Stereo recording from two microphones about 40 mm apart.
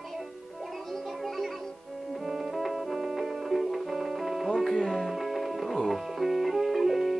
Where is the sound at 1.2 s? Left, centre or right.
Centre.